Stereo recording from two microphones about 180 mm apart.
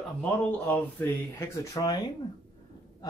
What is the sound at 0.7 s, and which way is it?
Speech, 10° left (ahead or behind).